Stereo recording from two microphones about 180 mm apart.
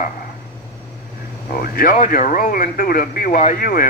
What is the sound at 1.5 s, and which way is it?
Speech, 55° left (ahead or behind).